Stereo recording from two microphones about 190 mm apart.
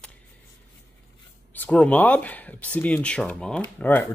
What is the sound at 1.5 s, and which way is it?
Speech, 10° left (ahead or behind).